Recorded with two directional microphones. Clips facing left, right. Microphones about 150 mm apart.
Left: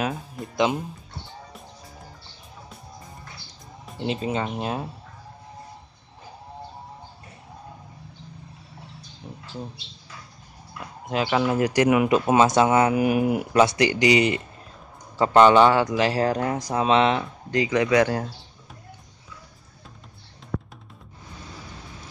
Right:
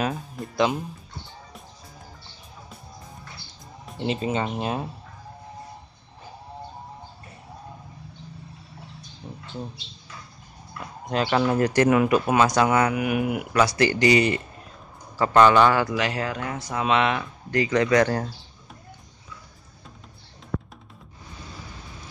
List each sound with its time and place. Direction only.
0.0 s speech: centre (ahead or behind)
3.8 s speech: centre (ahead or behind)
10.8 s speech: 5° left (ahead or behind); by 17.3 s 30° left (ahead or behind)
17.5 s speech: 15° left (ahead or behind)